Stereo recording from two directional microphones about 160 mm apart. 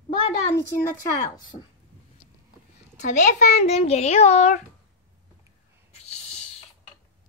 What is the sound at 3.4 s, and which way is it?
Child singing, 45° left (ahead or behind).